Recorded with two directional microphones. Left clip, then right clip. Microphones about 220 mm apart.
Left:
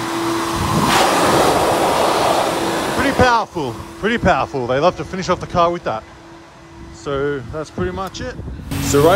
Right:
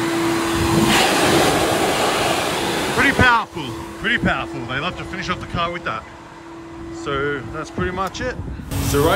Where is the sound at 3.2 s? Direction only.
25° left (ahead or behind).